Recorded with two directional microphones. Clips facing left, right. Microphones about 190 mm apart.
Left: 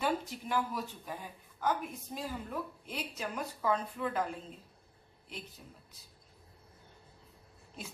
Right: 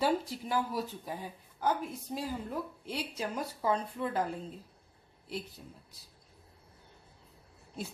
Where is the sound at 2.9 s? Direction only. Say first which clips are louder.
Right 4 dB; 30° right (ahead or behind).